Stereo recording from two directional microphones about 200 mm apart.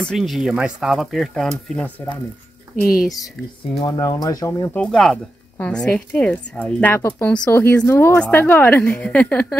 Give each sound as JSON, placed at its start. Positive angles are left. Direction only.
{"t": 0.0, "sound": "speech", "side_deg": 0}
{"t": 2.7, "sound": "speech", "side_deg": 45}
{"t": 3.8, "sound": "speech", "side_deg": 20}